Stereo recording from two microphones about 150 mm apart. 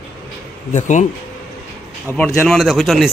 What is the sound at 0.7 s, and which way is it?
Speech, 55° left (ahead or behind).